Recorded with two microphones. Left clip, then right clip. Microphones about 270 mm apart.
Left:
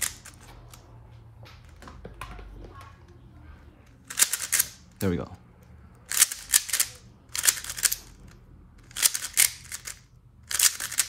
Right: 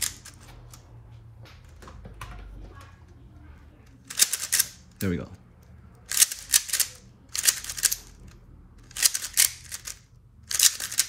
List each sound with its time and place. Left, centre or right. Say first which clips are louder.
4.1 s typewriter: right 1 dB; centre
5.0 s speech: left 2 dB; centre
6.0 s scissors: right 1 dB; centre